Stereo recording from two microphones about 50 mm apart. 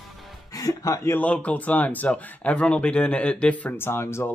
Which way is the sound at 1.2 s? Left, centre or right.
Left.